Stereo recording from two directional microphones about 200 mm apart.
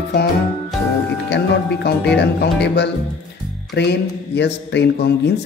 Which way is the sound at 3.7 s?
60° left (ahead or behind).